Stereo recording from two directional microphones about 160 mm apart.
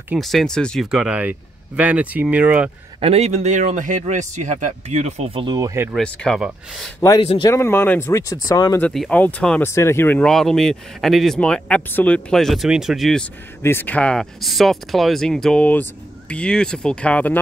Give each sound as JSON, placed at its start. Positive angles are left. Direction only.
{"t": 0.1, "sound": "speech", "side_deg": 0}
{"t": 3.0, "sound": "a man's voice", "side_deg": -40}
{"t": 5.9, "sound": "speech", "side_deg": 5}
{"t": 7.2, "sound": "speech", "side_deg": 35}
{"t": 7.5, "sound": "speech", "side_deg": 15}
{"t": 8.8, "sound": "speech", "side_deg": 5}
{"t": 13.6, "sound": "speech", "side_deg": 15}